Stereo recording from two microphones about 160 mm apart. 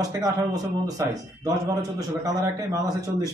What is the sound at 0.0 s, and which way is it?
A man's voice, 20° right (ahead or behind).